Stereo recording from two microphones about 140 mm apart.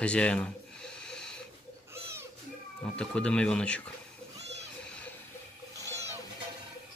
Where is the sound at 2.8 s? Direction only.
5° left (ahead or behind).